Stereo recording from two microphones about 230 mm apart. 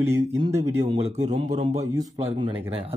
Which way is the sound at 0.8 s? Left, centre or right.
Right.